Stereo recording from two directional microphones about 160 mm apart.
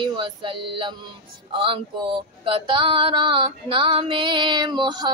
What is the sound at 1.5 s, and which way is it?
Speech, 30° right (ahead or behind).